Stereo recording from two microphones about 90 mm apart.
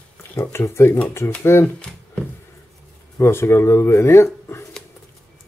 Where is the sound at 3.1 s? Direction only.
30° left (ahead or behind).